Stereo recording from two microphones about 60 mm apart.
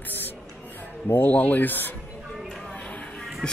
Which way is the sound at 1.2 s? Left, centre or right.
Left.